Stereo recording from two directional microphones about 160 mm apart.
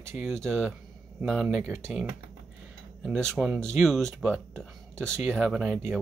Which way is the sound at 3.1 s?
5° left (ahead or behind).